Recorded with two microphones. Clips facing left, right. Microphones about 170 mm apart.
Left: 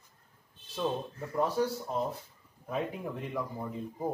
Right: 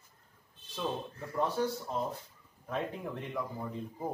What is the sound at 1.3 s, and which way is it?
Speech, 5° left (ahead or behind).